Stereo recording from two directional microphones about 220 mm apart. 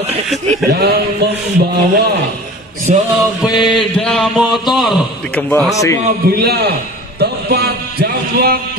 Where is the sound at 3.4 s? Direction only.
Centre (ahead or behind).